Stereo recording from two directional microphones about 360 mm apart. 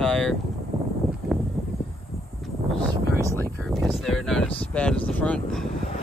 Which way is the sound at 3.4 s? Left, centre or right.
Centre.